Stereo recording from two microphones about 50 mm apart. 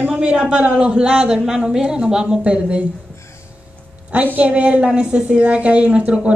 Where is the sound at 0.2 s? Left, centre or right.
Right.